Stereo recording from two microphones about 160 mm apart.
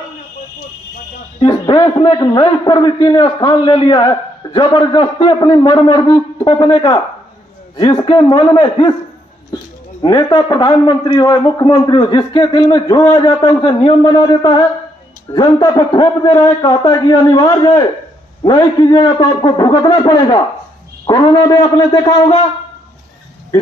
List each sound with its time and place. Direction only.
1.4 s a man's voice: 30° left (ahead or behind)
10.0 s a man's voice: 30° left (ahead or behind)